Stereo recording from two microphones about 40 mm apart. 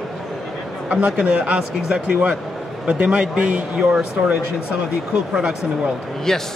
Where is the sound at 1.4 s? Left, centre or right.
Right.